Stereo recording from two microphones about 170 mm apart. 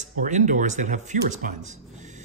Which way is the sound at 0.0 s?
45° right (ahead or behind).